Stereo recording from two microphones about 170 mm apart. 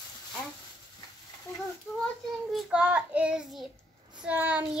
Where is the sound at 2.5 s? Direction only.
5° right (ahead or behind).